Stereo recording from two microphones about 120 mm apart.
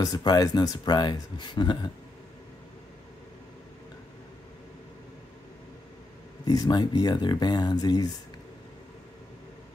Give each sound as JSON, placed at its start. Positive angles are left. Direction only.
{"t": 0.0, "sound": "speech", "side_deg": 30}
{"t": 6.4, "sound": "speech", "side_deg": 35}